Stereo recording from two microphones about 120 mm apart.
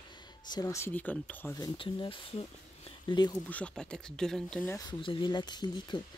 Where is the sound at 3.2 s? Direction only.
35° left (ahead or behind).